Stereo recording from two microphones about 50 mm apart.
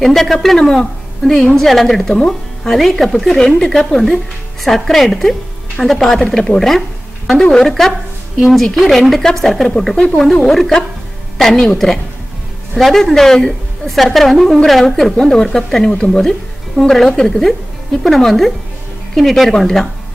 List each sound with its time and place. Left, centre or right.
0.0 s a woman's voice: centre
8.4 s a woman's voice: centre
15.9 s speech: left
16.2 s a woman's voice: centre